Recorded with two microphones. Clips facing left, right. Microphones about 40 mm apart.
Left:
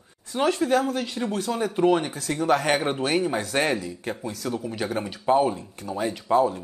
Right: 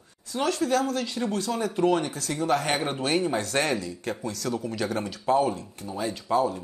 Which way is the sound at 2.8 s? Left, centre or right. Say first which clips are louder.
Left 2 dB; left.